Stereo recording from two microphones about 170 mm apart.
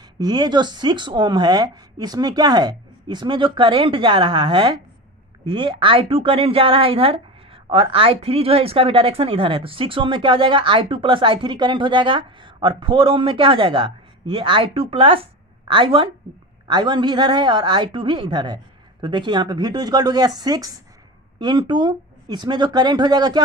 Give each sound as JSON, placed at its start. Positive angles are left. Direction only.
{"t": 0.2, "sound": "a woman's voice", "side_deg": -25}